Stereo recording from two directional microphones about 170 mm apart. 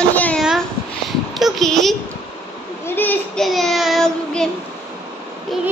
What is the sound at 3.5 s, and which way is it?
A woman's voice, centre (ahead or behind).